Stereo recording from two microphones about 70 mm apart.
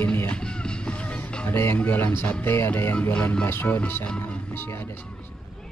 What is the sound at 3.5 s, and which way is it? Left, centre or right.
Speech, left.